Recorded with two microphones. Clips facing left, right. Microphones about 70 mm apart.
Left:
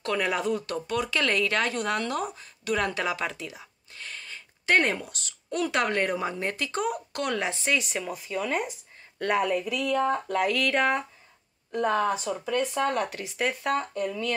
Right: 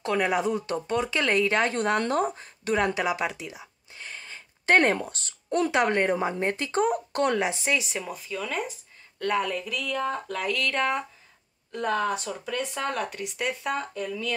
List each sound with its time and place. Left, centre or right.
0.0 s speech: right
4.7 s speech: right
5.7 s a woman's voice: right
7.3 s speech: centre
8.1 s speech: centre
12.1 s speech: centre